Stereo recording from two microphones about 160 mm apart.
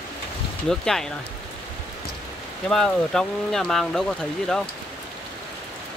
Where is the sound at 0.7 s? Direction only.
5° left (ahead or behind).